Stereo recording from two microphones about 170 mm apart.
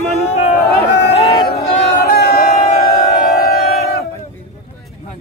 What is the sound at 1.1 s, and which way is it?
Speech, 35° left (ahead or behind).